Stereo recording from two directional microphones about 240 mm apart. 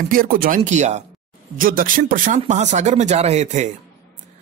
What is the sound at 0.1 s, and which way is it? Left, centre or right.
Speech, right.